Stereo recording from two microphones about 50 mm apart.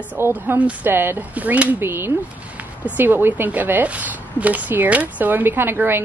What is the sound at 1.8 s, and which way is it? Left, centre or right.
A woman's voice, right.